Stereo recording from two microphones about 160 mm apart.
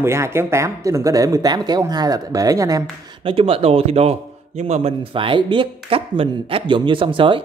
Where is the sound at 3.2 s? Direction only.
35° right (ahead or behind).